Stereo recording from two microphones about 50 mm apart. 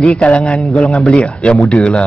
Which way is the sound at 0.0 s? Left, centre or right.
Left.